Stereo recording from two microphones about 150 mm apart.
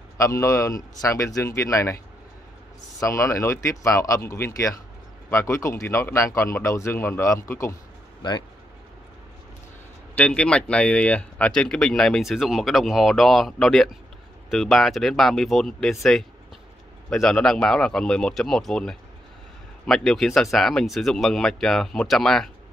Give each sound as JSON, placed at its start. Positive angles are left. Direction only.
{"t": 0.2, "sound": "speech", "side_deg": 20}
{"t": 3.0, "sound": "speech", "side_deg": 20}
{"t": 10.1, "sound": "speech", "side_deg": 10}